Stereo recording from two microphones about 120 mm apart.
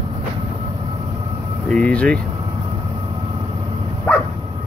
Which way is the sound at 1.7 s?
10° left (ahead or behind).